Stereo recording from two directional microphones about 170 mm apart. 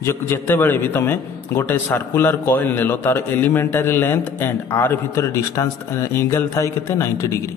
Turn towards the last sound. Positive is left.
turn(degrees=15)  # may be behind; listen again after turning